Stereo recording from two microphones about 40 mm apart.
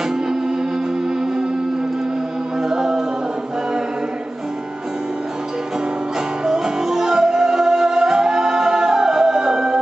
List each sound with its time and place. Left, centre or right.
2.7 s music: centre
6.4 s music: centre